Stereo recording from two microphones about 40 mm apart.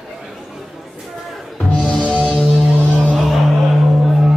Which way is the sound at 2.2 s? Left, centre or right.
Centre.